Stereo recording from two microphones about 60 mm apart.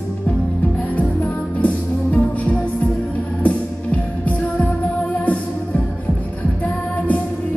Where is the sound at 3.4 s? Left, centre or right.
Left.